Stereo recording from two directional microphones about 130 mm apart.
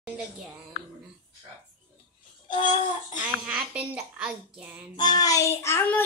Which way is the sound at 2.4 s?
35° left (ahead or behind).